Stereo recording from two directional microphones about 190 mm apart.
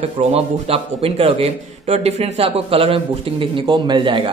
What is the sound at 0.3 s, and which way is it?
A man's voice, 30° right (ahead or behind).